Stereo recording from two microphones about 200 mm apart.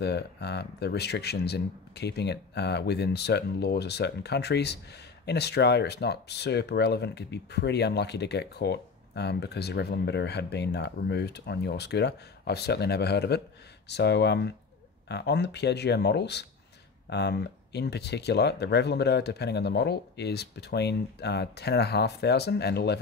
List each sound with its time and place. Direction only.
0.0 s speech: 55° left (ahead or behind)